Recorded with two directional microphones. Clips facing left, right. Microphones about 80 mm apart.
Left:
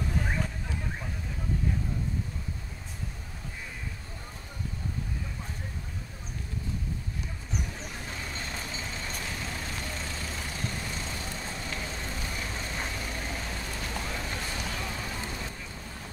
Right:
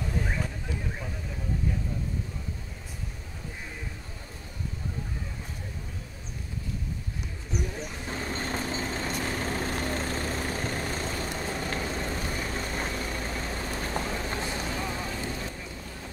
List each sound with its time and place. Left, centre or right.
8.1 s vehicle: right